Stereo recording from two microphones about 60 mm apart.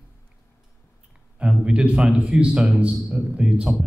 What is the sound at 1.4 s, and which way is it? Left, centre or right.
A man's voice, centre.